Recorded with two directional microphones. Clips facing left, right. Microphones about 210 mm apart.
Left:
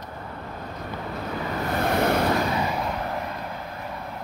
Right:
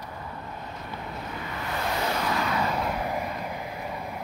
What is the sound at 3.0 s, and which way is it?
Vehicle, 10° right (ahead or behind).